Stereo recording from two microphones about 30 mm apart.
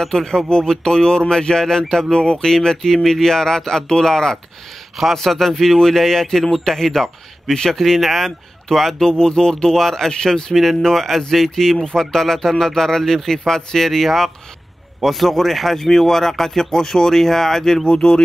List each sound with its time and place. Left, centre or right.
0.0 s speech: centre
0.7 s speech: centre
4.9 s speech: centre
5.2 s speech: centre
10.5 s speech: centre
10.8 s speech: centre
15.0 s speech: centre
15.8 s speech: centre
17.8 s a sound: left